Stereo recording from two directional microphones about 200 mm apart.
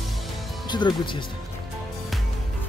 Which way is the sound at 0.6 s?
20° left (ahead or behind).